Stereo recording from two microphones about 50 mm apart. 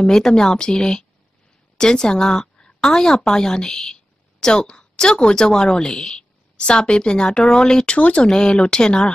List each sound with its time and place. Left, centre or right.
0.0 s a woman's voice: centre